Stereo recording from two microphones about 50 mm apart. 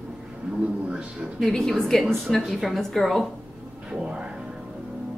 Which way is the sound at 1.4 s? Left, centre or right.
Centre.